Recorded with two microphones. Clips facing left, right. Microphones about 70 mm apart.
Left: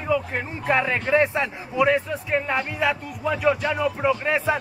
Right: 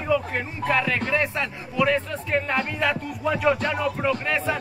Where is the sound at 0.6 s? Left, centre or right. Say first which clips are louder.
Left 2 dB; left; by 3.8 s centre.